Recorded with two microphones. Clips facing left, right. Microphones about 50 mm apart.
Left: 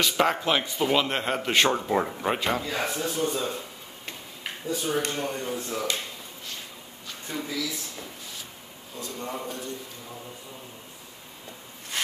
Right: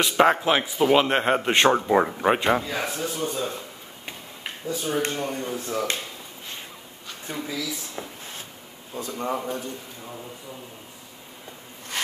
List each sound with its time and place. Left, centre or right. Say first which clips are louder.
0.0 s speech: right 5 dB; right
0.4 s speech: right 4 dB; centre
0.9 s speech: right 6 dB; right
2.6 s speech: even; centre
4.6 s speech: right 2 dB; centre
7.2 s speech: right 1 dB; centre
8.9 s speech: right 6 dB; right